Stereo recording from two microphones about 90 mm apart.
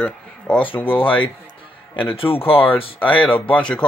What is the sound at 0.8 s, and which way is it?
Speech, 80° left.